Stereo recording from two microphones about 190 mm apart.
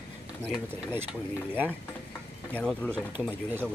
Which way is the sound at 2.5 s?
5° left (ahead or behind).